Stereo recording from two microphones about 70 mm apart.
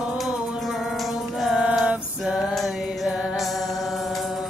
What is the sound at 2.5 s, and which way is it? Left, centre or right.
Mantra, centre.